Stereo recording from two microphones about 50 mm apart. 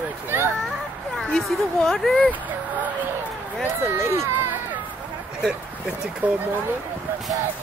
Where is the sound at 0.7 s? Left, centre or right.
Centre.